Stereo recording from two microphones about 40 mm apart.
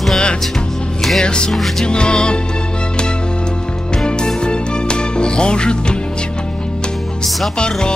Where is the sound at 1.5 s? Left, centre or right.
Centre.